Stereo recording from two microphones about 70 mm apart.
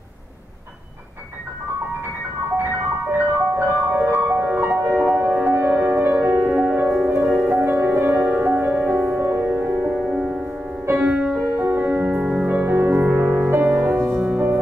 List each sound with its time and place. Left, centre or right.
2.5 s music: right
4.7 s music: right
5.8 s music: centre
6.2 s music: right
6.5 s music: centre
7.4 s music: right
9.8 s music: centre
11.4 s music: right
11.8 s music: centre
14.1 s music: centre